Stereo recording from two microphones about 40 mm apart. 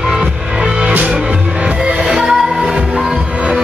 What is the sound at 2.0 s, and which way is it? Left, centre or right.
Music, centre.